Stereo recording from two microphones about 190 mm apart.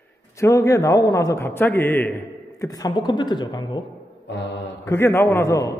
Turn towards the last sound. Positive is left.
turn(degrees=15)  # may be behind; listen again after turning